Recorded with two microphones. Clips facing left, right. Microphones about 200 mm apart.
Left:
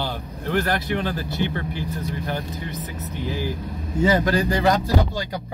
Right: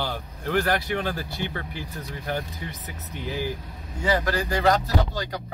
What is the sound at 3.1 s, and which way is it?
Speech, 15° right (ahead or behind).